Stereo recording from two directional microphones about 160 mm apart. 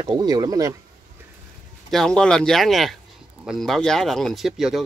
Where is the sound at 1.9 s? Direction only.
5° left (ahead or behind).